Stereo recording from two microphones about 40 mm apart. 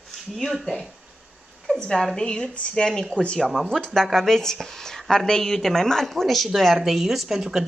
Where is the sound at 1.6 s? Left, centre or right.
Centre.